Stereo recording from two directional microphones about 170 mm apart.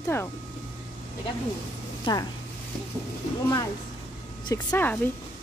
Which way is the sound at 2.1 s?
30° left (ahead or behind).